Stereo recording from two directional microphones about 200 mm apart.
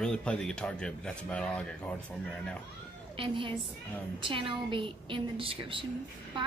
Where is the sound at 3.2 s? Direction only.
25° right (ahead or behind).